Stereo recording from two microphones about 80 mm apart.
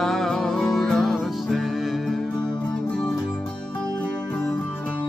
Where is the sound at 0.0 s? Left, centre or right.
Centre.